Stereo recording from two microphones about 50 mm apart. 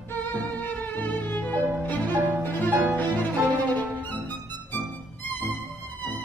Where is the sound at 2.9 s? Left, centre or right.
Left.